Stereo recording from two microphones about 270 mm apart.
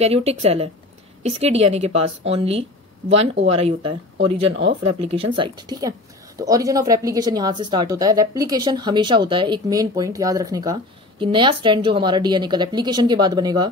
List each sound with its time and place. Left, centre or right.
0.0 s speech: right
4.5 s speech: right
5.0 s a woman's voice: centre